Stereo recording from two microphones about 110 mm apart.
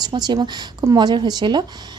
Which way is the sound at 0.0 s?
40° right (ahead or behind).